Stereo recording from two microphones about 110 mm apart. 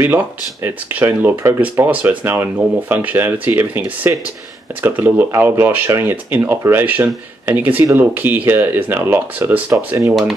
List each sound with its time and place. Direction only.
0.0 s speech: 20° right (ahead or behind)